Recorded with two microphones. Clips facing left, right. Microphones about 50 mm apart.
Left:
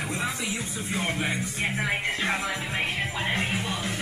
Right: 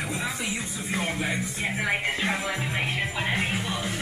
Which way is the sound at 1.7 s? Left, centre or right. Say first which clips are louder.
Right 3 dB; centre.